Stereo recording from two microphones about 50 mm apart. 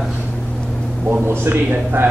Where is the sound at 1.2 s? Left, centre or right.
Right.